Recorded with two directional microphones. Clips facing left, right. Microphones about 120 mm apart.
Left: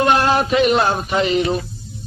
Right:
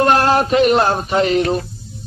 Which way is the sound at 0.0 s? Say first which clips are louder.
Right 2 dB; 40° right (ahead or behind).